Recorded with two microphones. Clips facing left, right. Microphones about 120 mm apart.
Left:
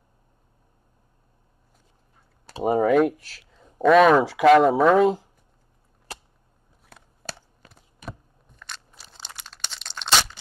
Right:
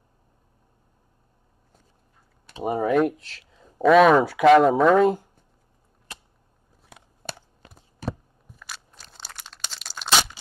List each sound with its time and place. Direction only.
2.4 s typing: 35° left (ahead or behind)
2.8 s speech: centre (ahead or behind)
8.0 s a sound: 35° right (ahead or behind)
8.5 s crushing: 5° right (ahead or behind)
9.3 s crumpling: centre (ahead or behind)